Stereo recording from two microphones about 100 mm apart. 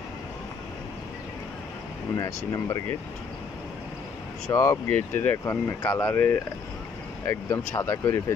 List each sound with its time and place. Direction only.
2.1 s speech: 35° left (ahead or behind)
4.5 s speech: 30° left (ahead or behind)